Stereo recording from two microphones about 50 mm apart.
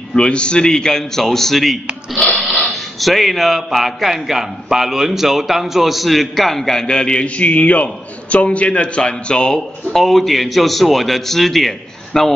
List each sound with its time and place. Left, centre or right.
0.1 s a man's voice: left
9.6 s a man's voice: centre